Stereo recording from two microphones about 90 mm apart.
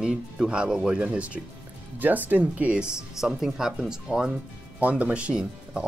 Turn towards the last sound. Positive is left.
turn(degrees=-10)  # may be behind; listen again after turning